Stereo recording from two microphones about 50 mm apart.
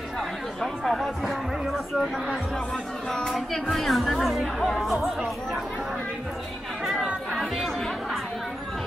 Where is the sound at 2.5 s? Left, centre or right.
Centre.